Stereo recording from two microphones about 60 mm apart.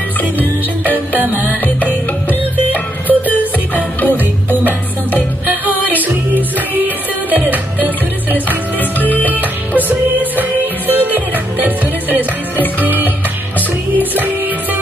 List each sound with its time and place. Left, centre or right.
1.1 s music: right
2.2 s music: left
4.2 s music: right
8.7 s music: left
9.3 s music: right